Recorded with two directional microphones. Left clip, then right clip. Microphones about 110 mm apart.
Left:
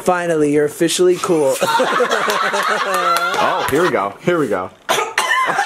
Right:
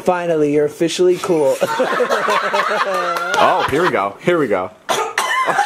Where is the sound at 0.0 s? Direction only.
Centre (ahead or behind).